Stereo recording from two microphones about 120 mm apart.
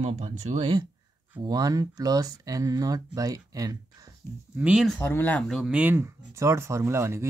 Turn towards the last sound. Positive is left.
turn(degrees=-25)  # may be behind; listen again after turning